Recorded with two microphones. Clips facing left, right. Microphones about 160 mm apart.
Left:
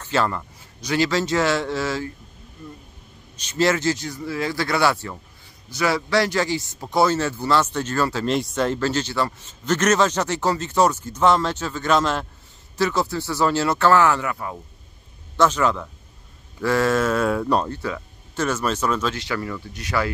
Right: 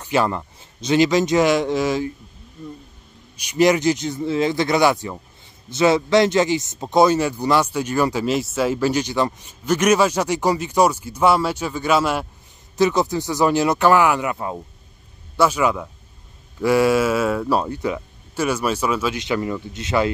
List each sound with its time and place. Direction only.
0.0 s speech: 15° right (ahead or behind)
3.3 s speech: 15° right (ahead or behind)
15.3 s speech: 10° right (ahead or behind)